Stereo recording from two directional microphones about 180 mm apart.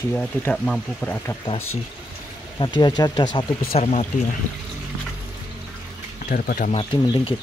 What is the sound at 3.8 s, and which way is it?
Speech, 40° left (ahead or behind).